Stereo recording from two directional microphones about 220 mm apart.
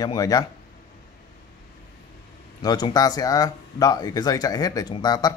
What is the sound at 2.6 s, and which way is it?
Speech, 20° left (ahead or behind).